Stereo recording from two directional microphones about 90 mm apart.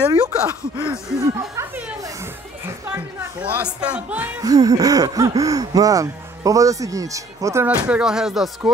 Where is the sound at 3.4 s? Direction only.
15° right (ahead or behind).